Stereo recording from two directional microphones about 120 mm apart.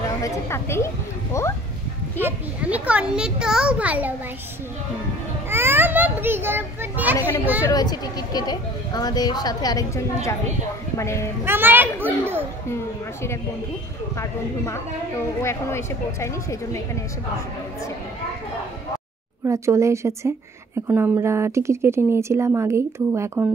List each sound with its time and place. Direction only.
0.2 s a woman's voice: 20° left (ahead or behind)
2.1 s a child's voice: 15° right (ahead or behind)
5.5 s a child's voice: 20° right (ahead or behind)
7.6 s a woman's voice: 35° left (ahead or behind)
11.4 s a child's voice: 15° right (ahead or behind)
12.6 s speech: 20° left (ahead or behind)
14.7 s a woman's voice: 25° left (ahead or behind)
19.4 s speech: 25° right (ahead or behind)